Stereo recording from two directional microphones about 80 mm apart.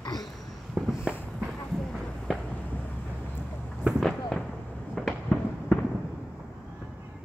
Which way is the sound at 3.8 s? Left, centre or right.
Centre.